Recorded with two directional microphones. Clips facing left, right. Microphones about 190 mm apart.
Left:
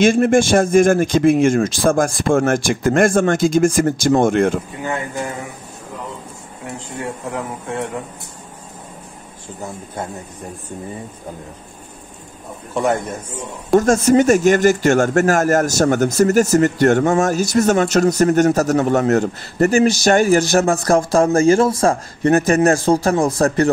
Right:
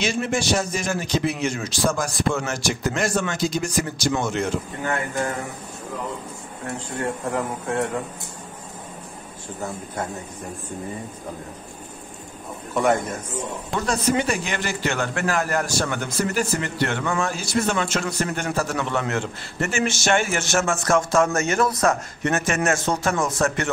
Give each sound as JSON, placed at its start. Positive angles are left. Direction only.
{"t": 0.0, "sound": "speech", "side_deg": 50}
{"t": 4.8, "sound": "speech", "side_deg": 20}
{"t": 7.2, "sound": "speech", "side_deg": 0}
{"t": 13.7, "sound": "a man's voice", "side_deg": 45}